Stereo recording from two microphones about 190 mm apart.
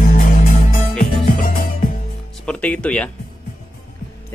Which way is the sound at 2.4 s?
5° left (ahead or behind).